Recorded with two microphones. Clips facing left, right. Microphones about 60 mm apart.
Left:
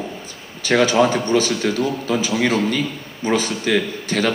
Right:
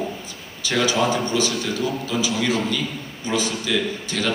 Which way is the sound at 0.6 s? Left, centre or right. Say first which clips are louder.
Left 5 dB; left.